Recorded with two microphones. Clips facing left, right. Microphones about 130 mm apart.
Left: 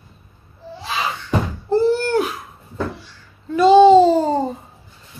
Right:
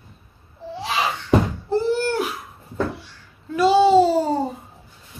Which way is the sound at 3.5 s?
5° right (ahead or behind).